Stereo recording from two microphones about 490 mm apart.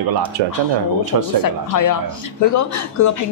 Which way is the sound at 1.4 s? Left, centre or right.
Left.